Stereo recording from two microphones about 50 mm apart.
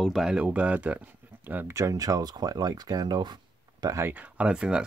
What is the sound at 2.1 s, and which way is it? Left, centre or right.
Speech, right.